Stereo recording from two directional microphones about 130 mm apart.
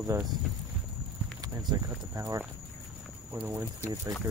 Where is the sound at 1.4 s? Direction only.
30° right (ahead or behind).